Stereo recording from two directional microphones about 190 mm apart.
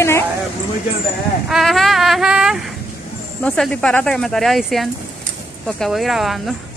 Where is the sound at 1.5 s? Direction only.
Centre (ahead or behind).